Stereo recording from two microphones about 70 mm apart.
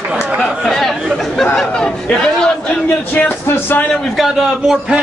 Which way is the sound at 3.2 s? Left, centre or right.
Left.